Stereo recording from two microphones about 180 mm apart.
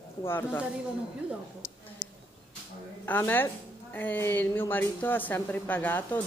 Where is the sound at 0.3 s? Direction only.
10° left (ahead or behind).